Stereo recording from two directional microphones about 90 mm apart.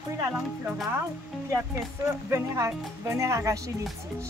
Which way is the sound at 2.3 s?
30° right (ahead or behind).